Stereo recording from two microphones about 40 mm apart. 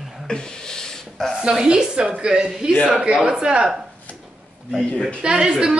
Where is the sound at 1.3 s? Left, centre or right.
Centre.